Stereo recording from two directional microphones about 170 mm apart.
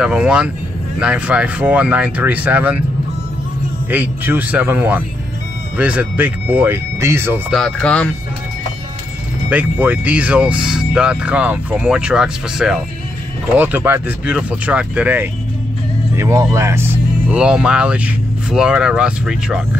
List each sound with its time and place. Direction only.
0.0 s speech: 5° right (ahead or behind)
3.9 s speech: 10° right (ahead or behind)
7.5 s speech: 5° left (ahead or behind)
9.5 s speech: 10° right (ahead or behind)